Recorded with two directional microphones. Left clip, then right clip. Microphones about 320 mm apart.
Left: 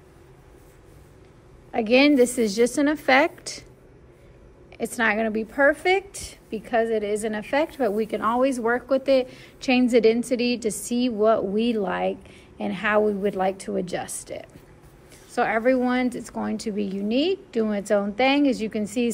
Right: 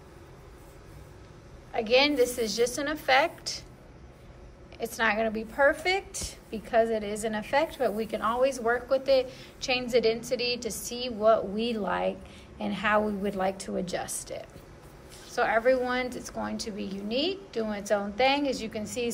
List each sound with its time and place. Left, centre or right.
1.7 s a woman's voice: left
4.7 s a woman's voice: left